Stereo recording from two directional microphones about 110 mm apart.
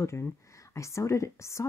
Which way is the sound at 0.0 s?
25° left (ahead or behind).